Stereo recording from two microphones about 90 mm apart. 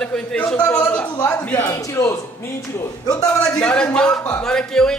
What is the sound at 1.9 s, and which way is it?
Speech, 30° left (ahead or behind).